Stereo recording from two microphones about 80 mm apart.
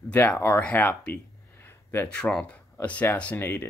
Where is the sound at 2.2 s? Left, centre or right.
Centre; by 3.7 s left.